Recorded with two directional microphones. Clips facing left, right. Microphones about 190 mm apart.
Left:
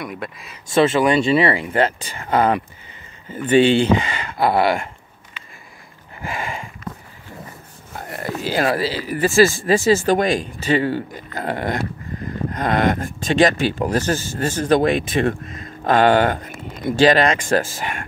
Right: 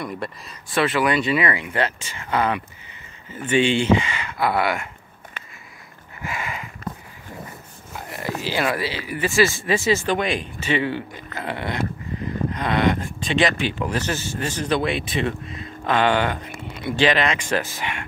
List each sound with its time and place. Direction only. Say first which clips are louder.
0.0 s speech: even; centre (ahead or behind)
0.7 s speech: left 5 dB; 25° left (ahead or behind)
6.2 s a sound: left 3 dB; 30° left (ahead or behind)
7.9 s speech: left 2 dB; 50° left (ahead or behind)